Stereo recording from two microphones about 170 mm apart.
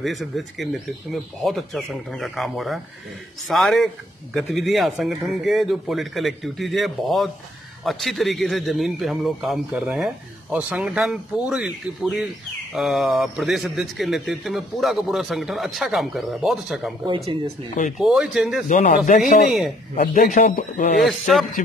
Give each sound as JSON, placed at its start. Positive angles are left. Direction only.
{"t": 0.0, "sound": "a man's voice", "side_deg": 0}
{"t": 17.9, "sound": "a man's voice", "side_deg": 0}
{"t": 18.7, "sound": "speech", "side_deg": 45}
{"t": 21.0, "sound": "a man's voice", "side_deg": 0}